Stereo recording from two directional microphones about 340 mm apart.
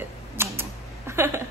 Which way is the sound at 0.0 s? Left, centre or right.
Centre.